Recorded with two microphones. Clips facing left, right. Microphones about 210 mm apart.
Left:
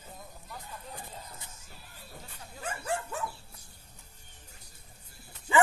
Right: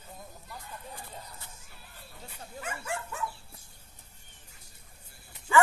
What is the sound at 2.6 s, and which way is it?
Dog, 35° left (ahead or behind).